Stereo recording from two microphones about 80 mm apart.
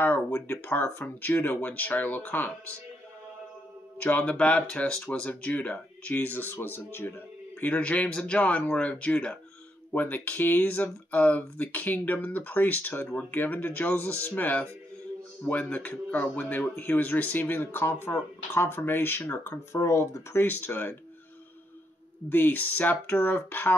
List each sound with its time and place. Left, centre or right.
0.0 s speech: left
4.0 s speech: centre
19.7 s speech: left
20.3 s speech: left
22.3 s speech: left